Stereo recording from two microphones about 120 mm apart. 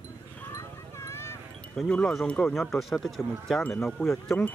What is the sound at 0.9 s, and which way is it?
Vehicle, 20° left (ahead or behind).